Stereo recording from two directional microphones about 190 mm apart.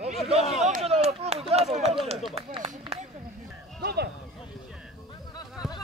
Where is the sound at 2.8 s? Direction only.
35° right (ahead or behind).